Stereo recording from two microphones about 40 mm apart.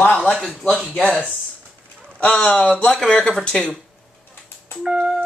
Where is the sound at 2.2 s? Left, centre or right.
Left.